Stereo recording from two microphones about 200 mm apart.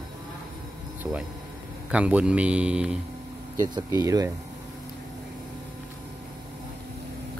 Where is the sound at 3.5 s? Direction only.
15° right (ahead or behind).